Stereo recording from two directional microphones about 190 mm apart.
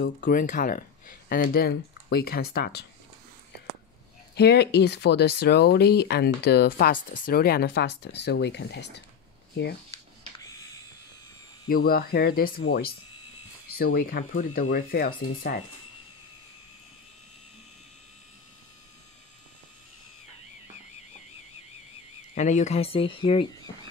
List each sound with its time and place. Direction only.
0.0 s speech: 45° left (ahead or behind)
4.4 s speech: 60° left (ahead or behind)
10.4 s printer: 20° left (ahead or behind)
11.7 s speech: 50° left (ahead or behind)
22.3 s speech: 40° left (ahead or behind)